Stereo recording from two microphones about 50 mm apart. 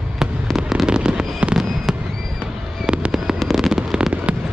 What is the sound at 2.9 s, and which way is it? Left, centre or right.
Fireworks, centre.